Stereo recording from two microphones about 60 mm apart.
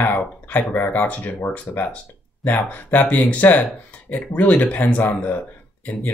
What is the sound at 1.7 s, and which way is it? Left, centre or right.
Speech, left.